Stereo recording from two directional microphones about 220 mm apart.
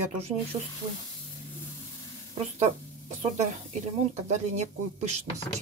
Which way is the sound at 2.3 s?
30° right (ahead or behind).